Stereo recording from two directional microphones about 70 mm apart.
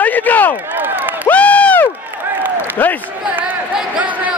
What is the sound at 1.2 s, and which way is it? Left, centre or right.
Crowd, left.